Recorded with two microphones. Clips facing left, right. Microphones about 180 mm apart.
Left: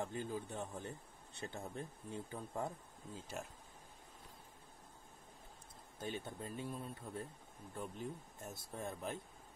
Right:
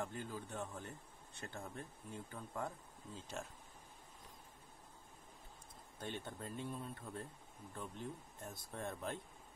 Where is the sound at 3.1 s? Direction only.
5° left (ahead or behind).